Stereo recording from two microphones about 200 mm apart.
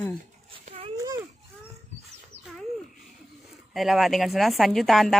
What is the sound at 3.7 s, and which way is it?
A woman's voice, centre (ahead or behind).